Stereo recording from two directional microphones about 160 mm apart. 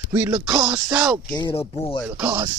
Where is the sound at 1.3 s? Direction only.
30° left (ahead or behind).